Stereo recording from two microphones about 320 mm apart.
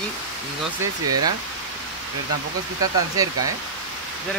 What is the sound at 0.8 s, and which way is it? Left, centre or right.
Speech, right.